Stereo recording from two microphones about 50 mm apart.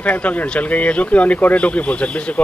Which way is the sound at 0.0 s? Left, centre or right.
Left.